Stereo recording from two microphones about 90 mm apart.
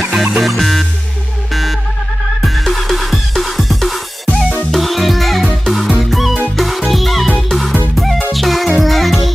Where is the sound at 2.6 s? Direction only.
Centre (ahead or behind).